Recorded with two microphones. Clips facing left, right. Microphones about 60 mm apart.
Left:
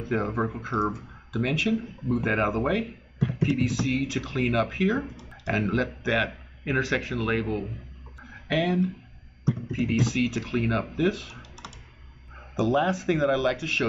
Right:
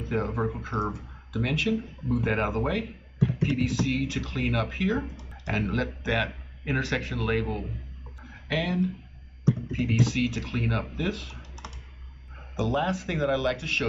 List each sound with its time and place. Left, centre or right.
0.1 s speech: centre
12.5 s speech: centre